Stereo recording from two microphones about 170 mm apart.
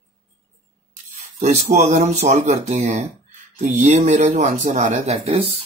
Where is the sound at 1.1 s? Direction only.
40° right (ahead or behind).